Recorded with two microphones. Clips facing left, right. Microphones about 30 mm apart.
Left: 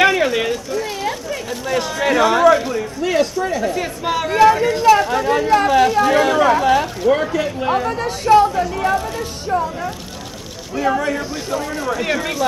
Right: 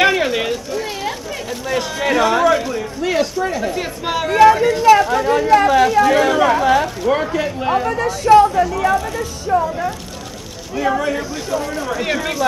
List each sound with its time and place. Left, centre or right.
0.0 s speech: centre
7.9 s speech: left
8.4 s speech: centre
9.5 s speech: centre
10.9 s speech: centre